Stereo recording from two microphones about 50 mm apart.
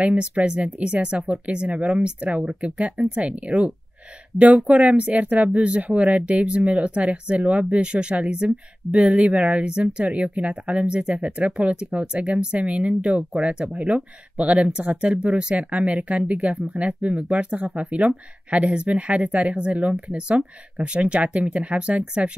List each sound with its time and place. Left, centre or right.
0.0 s speech: right